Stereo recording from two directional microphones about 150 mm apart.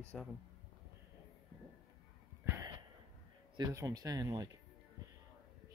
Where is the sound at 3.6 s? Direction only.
20° right (ahead or behind).